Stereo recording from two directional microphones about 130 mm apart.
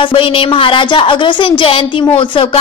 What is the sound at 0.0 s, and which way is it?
A woman's voice, 40° left (ahead or behind).